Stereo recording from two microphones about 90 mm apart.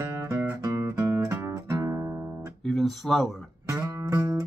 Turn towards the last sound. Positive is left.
turn(degrees=-35)  # may be behind; listen again after turning